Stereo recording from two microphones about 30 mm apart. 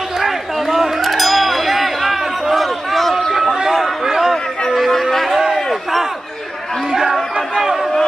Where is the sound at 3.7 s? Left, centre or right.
Centre.